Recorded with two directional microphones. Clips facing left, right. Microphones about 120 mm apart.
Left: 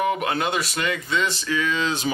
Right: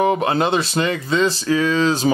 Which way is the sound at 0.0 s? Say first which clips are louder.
Right 6 dB; 30° right (ahead or behind).